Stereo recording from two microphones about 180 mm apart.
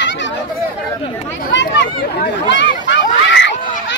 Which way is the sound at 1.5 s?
80° left.